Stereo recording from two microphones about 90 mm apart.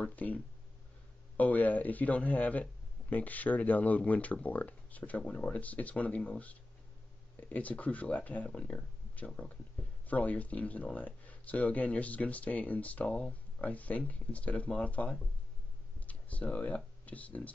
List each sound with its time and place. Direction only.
0.0 s speech: 15° left (ahead or behind)